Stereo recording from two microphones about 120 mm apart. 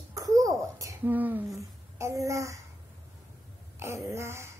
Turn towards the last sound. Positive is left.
turn(degrees=-20)  # may be behind; listen again after turning